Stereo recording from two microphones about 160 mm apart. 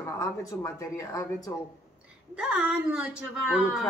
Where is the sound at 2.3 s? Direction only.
5° right (ahead or behind).